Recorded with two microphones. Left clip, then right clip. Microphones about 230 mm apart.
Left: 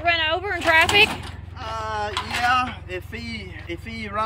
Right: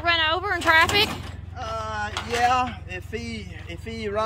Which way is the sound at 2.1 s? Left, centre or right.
Centre.